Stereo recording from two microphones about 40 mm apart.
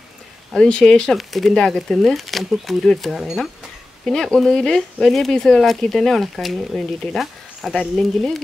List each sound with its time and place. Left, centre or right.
0.6 s speech: left
1.1 s speech: centre
1.5 s speech: centre
2.0 s speech: centre